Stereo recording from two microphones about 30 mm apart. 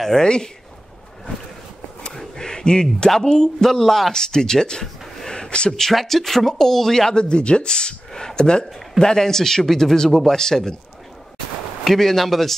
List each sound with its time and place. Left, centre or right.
0.2 s speech: left
2.1 s a sound: left
3.6 s speech: centre
4.1 s speech: left
5.3 s a sound: left
5.7 s speech: centre
7.2 s speech: left
11.8 s speech: centre